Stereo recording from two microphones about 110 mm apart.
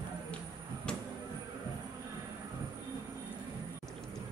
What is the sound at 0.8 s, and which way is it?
Vehicle, 10° left (ahead or behind).